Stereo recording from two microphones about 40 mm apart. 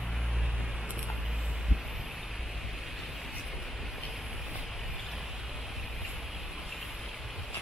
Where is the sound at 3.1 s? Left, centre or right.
Centre.